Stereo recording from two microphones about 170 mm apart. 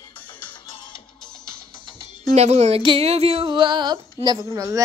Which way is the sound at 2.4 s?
40° right (ahead or behind).